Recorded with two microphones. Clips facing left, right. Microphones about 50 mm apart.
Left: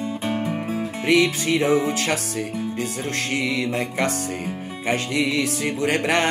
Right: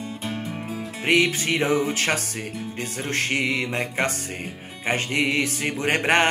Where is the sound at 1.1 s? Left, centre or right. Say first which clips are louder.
Left 2 dB; right.